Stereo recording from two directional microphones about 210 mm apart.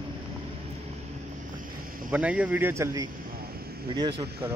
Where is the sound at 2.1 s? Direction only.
5° right (ahead or behind).